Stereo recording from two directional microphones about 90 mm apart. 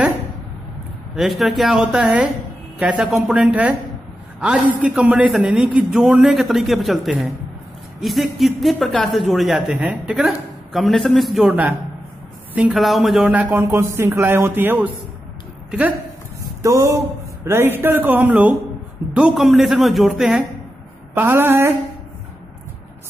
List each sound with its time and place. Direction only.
1.1 s a man's voice: centre (ahead or behind)
12.7 s speech: centre (ahead or behind)
13.3 s speech: 20° right (ahead or behind)
16.6 s speech: 35° right (ahead or behind)
17.5 s speech: 25° right (ahead or behind)
19.3 s speech: centre (ahead or behind)
21.1 s speech: 25° right (ahead or behind)